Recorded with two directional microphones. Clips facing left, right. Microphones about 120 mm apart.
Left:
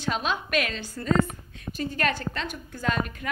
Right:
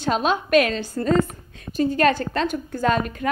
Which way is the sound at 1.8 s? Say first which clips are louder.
Right 9 dB; 30° right (ahead or behind).